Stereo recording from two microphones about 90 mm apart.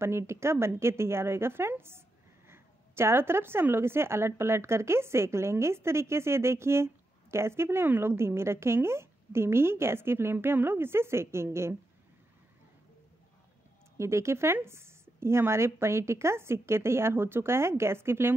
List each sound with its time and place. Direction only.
0.0 s a woman's voice: 30° right (ahead or behind)
13.9 s a woman's voice: 30° right (ahead or behind)